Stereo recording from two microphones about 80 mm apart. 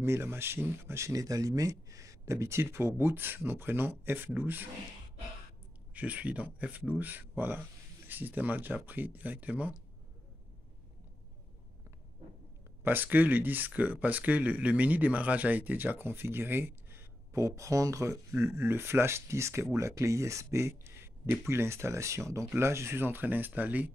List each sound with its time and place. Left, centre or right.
0.0 s speech: right
5.9 s speech: centre
12.8 s speech: right